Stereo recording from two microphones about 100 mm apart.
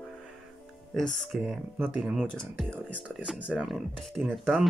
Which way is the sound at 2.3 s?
10° left (ahead or behind).